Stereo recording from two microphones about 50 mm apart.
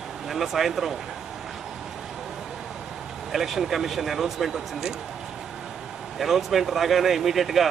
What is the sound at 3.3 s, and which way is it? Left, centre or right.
Speech, centre.